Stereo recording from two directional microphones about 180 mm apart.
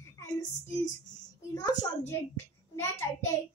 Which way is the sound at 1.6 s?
15° left (ahead or behind).